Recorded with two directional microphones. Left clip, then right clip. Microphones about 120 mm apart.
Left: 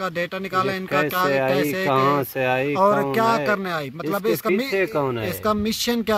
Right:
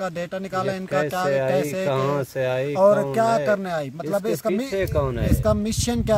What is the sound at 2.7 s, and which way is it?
Speech, 45° right (ahead or behind).